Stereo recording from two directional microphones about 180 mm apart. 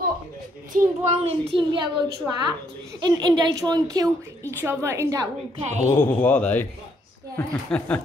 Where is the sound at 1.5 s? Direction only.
25° right (ahead or behind).